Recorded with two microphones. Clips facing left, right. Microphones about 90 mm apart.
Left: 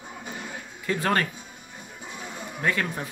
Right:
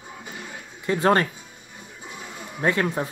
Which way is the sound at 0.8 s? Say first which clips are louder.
Right 5 dB; 30° right (ahead or behind).